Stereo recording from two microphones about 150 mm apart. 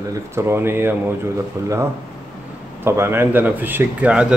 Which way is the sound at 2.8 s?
15° right (ahead or behind).